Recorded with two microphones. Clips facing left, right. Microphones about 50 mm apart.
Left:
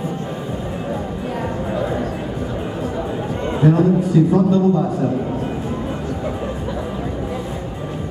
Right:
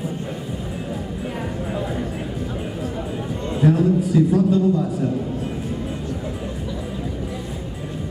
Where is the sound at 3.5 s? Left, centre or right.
Left.